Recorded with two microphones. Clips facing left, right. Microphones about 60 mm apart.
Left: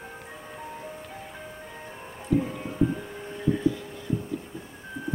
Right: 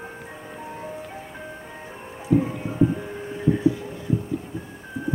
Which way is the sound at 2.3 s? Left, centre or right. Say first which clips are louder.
Right 4 dB; centre.